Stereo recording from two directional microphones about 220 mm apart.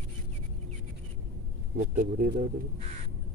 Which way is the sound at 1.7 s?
40° right (ahead or behind).